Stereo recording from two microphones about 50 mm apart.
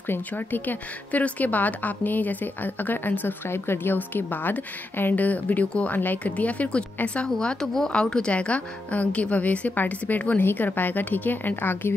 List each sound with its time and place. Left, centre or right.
0.3 s a woman's voice: left
3.4 s a woman's voice: left